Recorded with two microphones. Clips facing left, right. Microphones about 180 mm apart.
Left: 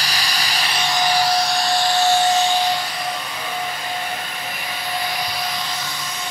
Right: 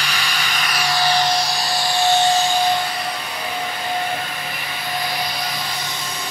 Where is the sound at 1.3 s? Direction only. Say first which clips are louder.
Left 2 dB; centre (ahead or behind).